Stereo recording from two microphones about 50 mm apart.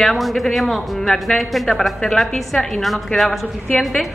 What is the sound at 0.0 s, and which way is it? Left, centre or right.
Speech, centre.